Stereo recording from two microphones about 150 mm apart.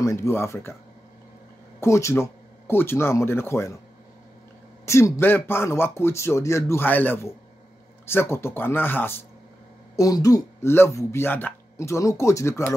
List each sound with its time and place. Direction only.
0.0 s speech: 20° left (ahead or behind)
1.8 s a man's voice: 20° left (ahead or behind)
4.8 s a man's voice: 20° left (ahead or behind)